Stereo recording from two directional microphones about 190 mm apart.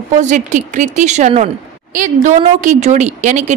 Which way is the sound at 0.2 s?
40° right (ahead or behind).